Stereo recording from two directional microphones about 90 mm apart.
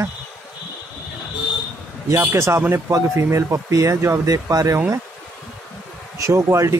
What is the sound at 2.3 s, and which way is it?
Speech, 30° right (ahead or behind).